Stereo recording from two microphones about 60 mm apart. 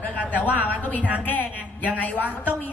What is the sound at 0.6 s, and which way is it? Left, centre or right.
A woman's voice, left.